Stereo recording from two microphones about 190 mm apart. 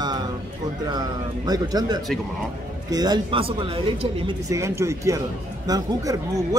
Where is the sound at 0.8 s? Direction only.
20° right (ahead or behind).